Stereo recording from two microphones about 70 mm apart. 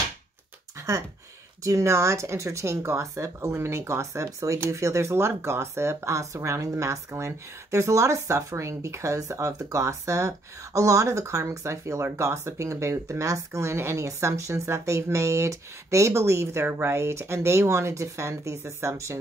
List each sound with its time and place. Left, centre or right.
1.6 s speech: right